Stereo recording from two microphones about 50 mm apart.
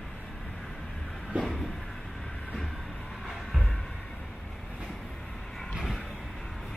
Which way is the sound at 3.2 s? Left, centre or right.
Centre.